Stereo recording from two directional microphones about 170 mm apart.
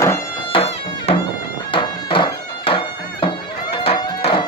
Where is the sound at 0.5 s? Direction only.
35° left (ahead or behind).